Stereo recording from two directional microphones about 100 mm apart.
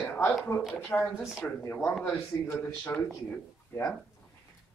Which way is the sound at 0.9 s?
5° left (ahead or behind).